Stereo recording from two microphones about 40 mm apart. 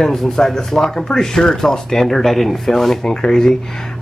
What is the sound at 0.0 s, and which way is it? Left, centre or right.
Speech, centre.